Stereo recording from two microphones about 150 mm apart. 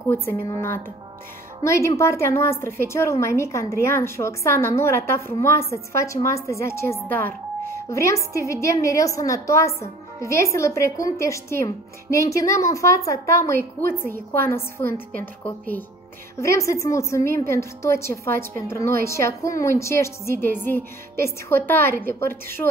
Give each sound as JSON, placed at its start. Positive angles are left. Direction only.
{"t": 0.1, "sound": "a woman's voice", "side_deg": 15}